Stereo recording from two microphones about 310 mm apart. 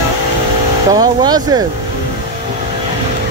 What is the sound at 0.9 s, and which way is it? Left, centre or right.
Speech, centre.